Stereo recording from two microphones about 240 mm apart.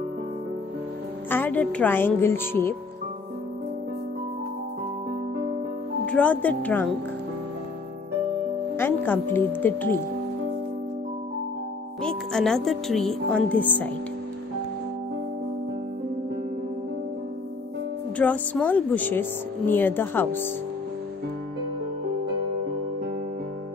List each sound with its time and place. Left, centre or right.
1.3 s a woman's voice: centre
6.1 s speech: centre
8.7 s a woman's voice: centre
12.0 s speech: centre
18.1 s a woman's voice: centre